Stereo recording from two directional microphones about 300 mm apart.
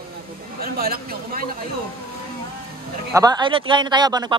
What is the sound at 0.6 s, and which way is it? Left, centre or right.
Speech, right.